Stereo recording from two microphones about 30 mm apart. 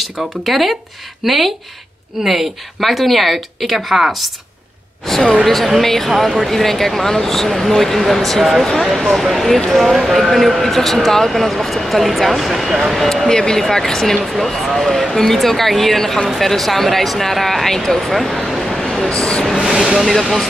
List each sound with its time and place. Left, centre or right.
0.0 s speech: centre
2.2 s speech: centre
2.8 s speech: centre
5.1 s speech: centre
6.1 s speech: centre
6.4 s speech: centre
13.0 s speech: centre
13.3 s speech: left
13.6 s speech: centre
18.5 s a sound: centre
18.9 s speech: left
19.6 s speech: centre